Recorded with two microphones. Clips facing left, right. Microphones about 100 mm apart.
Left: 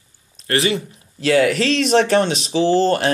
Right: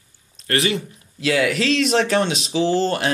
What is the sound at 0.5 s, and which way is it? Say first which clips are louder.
Speech: left 2 dB; 30° left (ahead or behind).